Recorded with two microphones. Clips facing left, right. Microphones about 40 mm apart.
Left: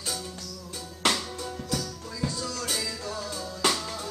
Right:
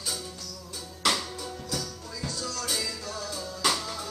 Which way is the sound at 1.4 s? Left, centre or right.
Centre.